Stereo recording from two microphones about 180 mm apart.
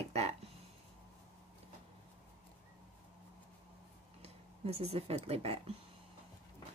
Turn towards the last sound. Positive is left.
turn(degrees=-35)  # may be behind; listen again after turning